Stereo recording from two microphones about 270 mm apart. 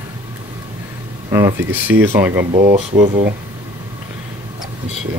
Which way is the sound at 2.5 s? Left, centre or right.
Right.